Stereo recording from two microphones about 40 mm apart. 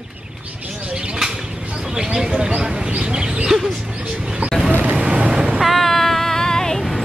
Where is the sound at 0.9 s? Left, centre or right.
Right.